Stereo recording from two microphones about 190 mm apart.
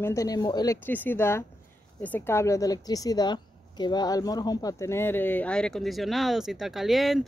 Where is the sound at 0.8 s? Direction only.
10° left (ahead or behind).